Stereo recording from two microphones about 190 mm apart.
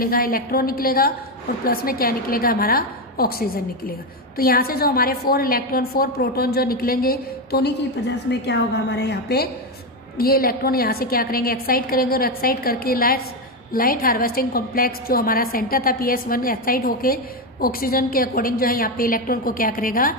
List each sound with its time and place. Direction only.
0.0 s a woman's voice: 50° left (ahead or behind)
8.3 s a woman's voice: 65° left (ahead or behind); by 20.2 s 50° left (ahead or behind)